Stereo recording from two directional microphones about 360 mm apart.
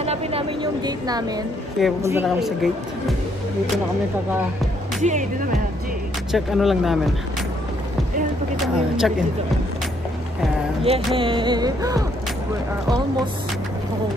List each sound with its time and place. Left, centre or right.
0.0 s a woman's voice: centre
5.0 s speech: right
6.3 s speech: centre
8.7 s speech: centre
11.1 s music: centre